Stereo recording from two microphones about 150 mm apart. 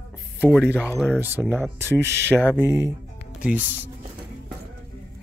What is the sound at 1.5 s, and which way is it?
Speech, 15° right (ahead or behind).